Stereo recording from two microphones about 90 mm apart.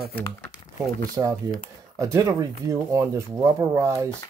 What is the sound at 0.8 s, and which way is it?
Speech, 40° right (ahead or behind).